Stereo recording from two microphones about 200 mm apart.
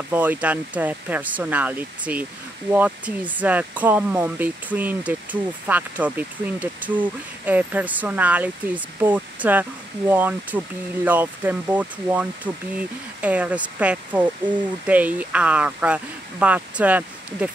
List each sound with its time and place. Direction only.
0.1 s speech: 10° right (ahead or behind)